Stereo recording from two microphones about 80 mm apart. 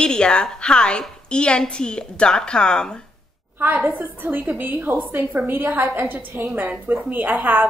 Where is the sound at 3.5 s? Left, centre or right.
Right.